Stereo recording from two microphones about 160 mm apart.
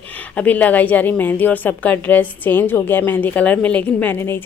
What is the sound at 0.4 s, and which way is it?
A woman's voice, 10° left (ahead or behind).